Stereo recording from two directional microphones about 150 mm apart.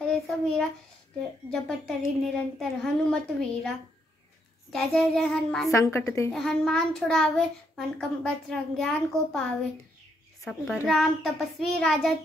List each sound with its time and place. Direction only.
0.1 s a sound: 5° left (ahead or behind)
1.5 s a child's voice: 5° left (ahead or behind)
4.7 s a child's voice: centre (ahead or behind)
5.7 s a woman's voice: 20° left (ahead or behind)
6.3 s a child's voice: 5° left (ahead or behind)
10.9 s a child's voice: centre (ahead or behind)